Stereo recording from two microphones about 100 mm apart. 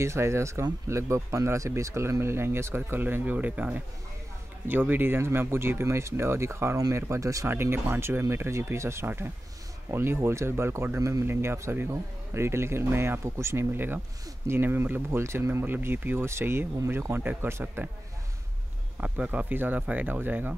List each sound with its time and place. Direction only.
0.0 s speech: 30° right (ahead or behind)
18.9 s speech: 10° right (ahead or behind)